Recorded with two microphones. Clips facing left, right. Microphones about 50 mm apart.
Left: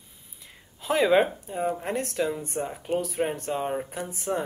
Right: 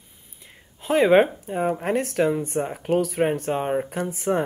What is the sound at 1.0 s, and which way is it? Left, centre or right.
Speech, right.